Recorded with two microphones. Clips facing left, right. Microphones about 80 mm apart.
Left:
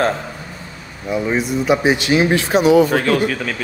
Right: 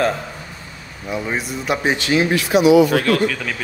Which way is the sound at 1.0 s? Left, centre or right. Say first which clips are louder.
Left 5 dB; centre.